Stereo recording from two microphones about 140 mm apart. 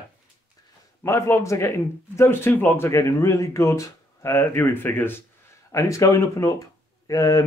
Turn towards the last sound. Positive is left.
turn(degrees=25)  # may be behind; listen again after turning